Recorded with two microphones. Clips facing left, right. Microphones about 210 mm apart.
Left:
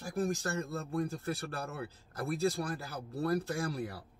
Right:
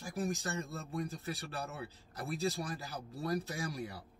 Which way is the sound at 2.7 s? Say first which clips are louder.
Left 3 dB; 55° left (ahead or behind).